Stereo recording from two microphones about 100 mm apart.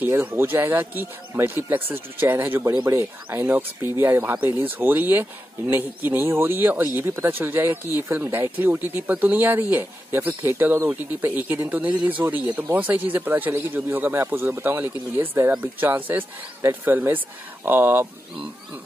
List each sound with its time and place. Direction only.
0.0 s speech: 20° right (ahead or behind)